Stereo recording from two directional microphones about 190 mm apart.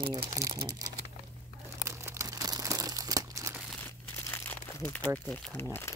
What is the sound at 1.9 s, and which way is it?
Crumpling, 15° right (ahead or behind).